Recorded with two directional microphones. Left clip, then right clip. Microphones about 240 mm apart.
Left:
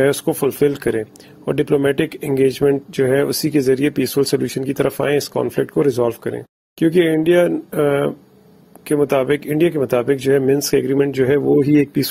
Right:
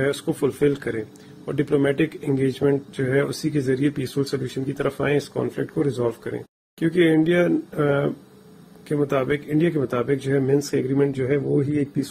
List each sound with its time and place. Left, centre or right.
0.0 s speech: left